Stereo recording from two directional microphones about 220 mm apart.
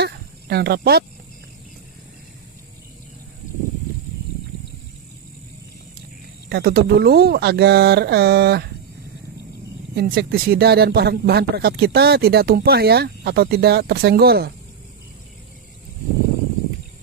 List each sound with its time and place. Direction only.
0.0 s cricket: 45° right (ahead or behind)
6.5 s speech: 45° right (ahead or behind)
9.9 s speech: 45° right (ahead or behind)